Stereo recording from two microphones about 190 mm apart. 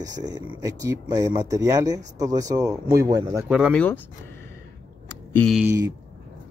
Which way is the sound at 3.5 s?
Centre (ahead or behind).